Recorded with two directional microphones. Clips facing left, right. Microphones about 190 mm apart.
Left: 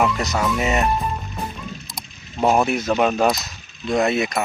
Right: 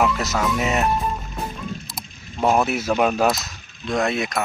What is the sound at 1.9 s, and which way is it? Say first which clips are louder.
Speech: right 1 dB; centre (ahead or behind).